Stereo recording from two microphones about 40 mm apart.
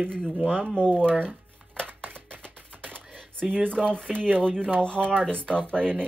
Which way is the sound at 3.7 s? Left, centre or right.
Left.